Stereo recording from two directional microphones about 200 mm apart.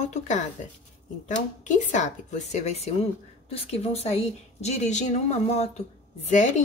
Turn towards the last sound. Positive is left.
turn(degrees=35)  # may be behind; listen again after turning